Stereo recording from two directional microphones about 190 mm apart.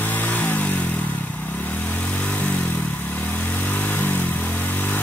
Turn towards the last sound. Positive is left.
turn(degrees=10)  # may be behind; listen again after turning